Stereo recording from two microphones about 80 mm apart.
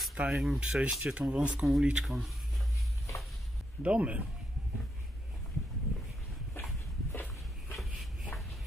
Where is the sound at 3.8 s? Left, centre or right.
Centre.